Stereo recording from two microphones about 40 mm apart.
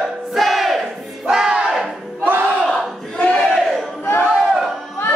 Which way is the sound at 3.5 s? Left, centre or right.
Centre.